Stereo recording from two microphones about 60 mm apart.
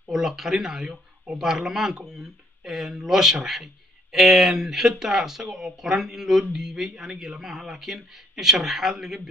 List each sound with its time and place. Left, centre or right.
0.1 s speech: centre